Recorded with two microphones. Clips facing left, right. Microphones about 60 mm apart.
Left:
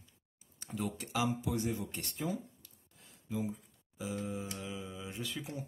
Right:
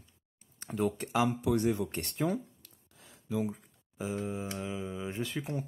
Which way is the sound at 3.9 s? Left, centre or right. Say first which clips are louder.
Right 4 dB; right.